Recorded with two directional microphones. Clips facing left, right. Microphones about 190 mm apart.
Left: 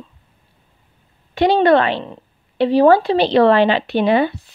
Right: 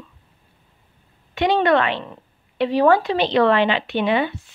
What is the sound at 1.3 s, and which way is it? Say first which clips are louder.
A woman's voice: left 4 dB; 35° left (ahead or behind).